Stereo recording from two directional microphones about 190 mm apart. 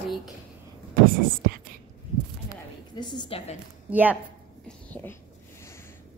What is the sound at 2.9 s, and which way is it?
Speech, 25° left (ahead or behind).